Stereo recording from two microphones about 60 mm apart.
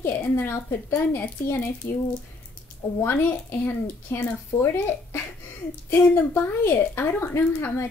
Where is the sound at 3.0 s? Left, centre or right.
Left.